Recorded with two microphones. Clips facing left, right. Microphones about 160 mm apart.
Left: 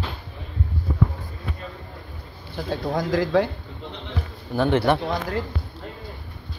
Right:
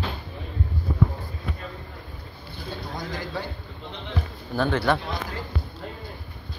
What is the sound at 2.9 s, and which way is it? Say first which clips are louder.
Speech: left 13 dB; 90° left.